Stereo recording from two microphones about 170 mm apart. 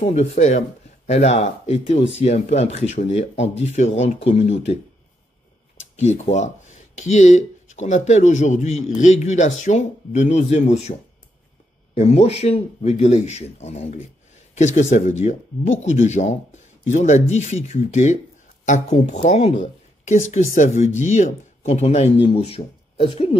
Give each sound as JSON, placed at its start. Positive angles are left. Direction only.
{"t": 0.0, "sound": "speech", "side_deg": 40}
{"t": 5.9, "sound": "speech", "side_deg": 40}
{"t": 20.2, "sound": "speech", "side_deg": 45}